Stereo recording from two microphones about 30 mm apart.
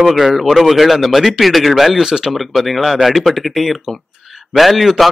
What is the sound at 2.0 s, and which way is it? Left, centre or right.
Speech, centre.